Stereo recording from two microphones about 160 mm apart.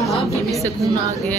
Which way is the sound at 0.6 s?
20° right (ahead or behind).